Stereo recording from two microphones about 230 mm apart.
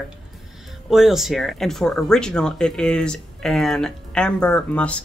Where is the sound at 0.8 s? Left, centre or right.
Centre.